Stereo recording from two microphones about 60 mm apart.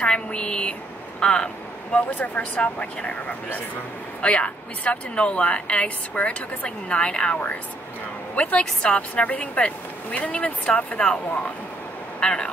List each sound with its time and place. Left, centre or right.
0.0 s a sound: centre
2.0 s speech: left
12.2 s speech: centre